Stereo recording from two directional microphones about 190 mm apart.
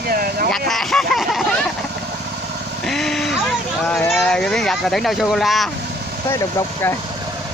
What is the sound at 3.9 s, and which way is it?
Speech, centre (ahead or behind).